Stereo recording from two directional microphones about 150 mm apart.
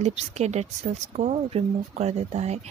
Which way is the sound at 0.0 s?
50° right (ahead or behind).